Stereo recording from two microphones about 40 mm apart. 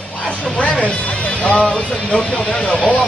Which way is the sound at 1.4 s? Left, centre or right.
Left.